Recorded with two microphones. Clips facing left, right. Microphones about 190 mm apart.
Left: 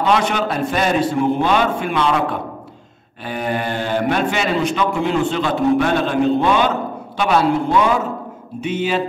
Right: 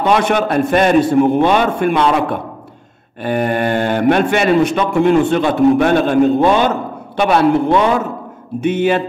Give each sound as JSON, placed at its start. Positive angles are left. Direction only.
{"t": 0.0, "sound": "a man's voice", "side_deg": -55}